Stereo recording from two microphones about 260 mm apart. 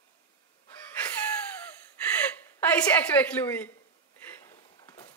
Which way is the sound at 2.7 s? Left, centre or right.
Centre.